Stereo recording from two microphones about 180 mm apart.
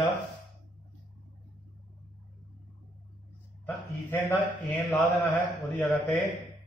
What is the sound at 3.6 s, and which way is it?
A man's voice, 10° left (ahead or behind).